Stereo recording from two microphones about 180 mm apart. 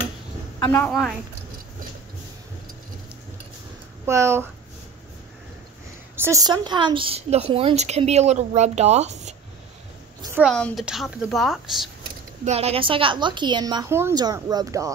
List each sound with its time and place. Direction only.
0.6 s a woman's voice: 10° left (ahead or behind)
4.0 s speech: 15° right (ahead or behind)
6.1 s speech: 15° right (ahead or behind); by 9.3 s 40° right (ahead or behind)
10.5 s speech: centre (ahead or behind)
12.4 s a woman's voice: 35° right (ahead or behind); by 14.9 s 20° right (ahead or behind)